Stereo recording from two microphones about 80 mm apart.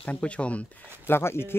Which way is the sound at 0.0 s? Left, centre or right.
Centre.